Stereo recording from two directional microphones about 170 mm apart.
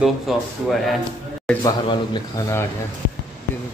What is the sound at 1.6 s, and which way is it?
Speech, 25° left (ahead or behind).